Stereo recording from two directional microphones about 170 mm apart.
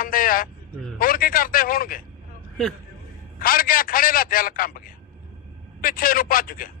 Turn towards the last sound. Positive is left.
turn(degrees=55)  # may be behind; listen again after turning